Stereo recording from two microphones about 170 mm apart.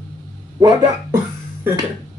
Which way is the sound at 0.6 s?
20° right (ahead or behind).